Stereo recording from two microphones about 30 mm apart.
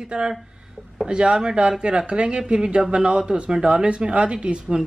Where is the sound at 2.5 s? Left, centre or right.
Right.